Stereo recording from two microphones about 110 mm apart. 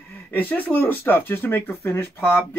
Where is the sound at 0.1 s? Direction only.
15° left (ahead or behind).